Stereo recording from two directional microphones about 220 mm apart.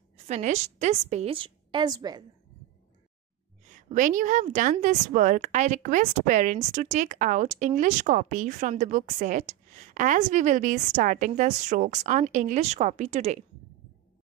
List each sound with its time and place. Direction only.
0.3 s a woman's voice: 30° right (ahead or behind)
3.6 s a woman's voice: 35° right (ahead or behind)